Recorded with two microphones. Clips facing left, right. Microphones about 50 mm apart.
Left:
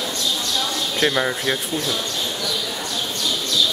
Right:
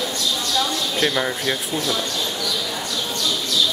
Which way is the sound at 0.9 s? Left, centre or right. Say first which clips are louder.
Left 2 dB; centre.